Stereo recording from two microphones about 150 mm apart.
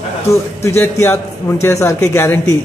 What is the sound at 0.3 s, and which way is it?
A man's voice, 15° left (ahead or behind).